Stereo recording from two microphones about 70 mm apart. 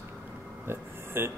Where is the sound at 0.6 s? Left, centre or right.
Right.